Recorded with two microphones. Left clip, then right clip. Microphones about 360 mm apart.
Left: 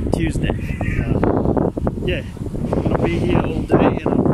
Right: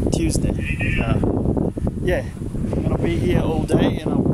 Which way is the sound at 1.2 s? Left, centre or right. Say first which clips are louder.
Left 4 dB; left.